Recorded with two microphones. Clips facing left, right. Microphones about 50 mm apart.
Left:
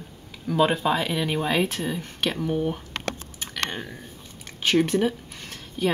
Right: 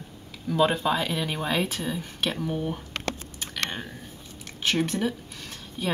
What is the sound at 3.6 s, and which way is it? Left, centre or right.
Speech, centre.